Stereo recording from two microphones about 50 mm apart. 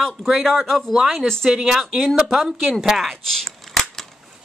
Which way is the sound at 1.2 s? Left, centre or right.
Centre.